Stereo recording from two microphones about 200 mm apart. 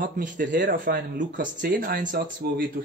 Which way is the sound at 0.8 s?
40° right (ahead or behind).